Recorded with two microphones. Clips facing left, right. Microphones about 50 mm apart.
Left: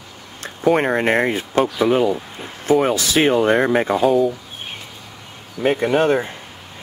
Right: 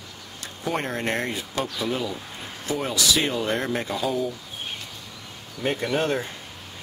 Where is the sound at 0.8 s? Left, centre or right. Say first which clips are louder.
Left 10 dB; left.